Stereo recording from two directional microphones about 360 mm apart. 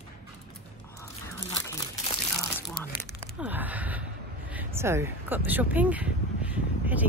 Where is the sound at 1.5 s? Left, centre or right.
Centre.